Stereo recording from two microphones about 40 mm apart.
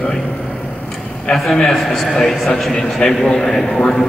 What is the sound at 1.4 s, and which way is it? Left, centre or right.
A man's voice, centre.